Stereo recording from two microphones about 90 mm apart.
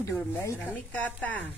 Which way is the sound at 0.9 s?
15° left (ahead or behind).